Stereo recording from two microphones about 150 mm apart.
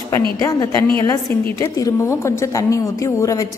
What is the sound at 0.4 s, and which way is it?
A woman's voice, 20° left (ahead or behind).